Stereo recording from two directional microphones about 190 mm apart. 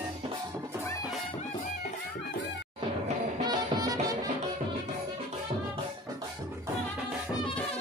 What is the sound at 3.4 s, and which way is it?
Music, 20° right (ahead or behind).